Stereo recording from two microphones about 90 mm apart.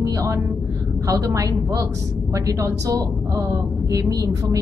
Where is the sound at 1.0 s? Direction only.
35° right (ahead or behind).